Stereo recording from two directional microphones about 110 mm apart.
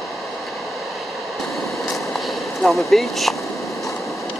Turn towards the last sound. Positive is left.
turn(degrees=0)  # may be behind; listen again after turning